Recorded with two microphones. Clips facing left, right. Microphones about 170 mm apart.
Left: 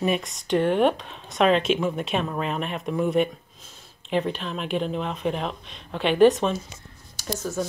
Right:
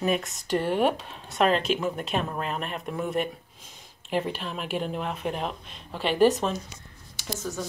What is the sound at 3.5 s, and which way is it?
Speech, 10° right (ahead or behind).